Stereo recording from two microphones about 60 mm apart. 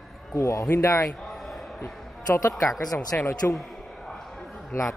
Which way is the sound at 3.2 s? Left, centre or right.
Left.